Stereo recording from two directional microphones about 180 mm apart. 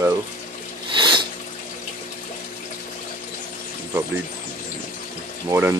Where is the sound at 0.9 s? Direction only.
25° right (ahead or behind).